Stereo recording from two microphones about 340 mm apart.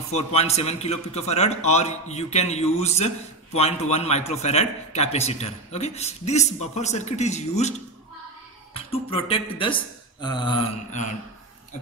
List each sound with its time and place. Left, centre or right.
0.1 s a man's voice: centre
8.7 s speech: centre
10.2 s a sound: centre